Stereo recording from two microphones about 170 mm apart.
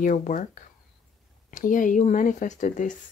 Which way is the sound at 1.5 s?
50° left (ahead or behind).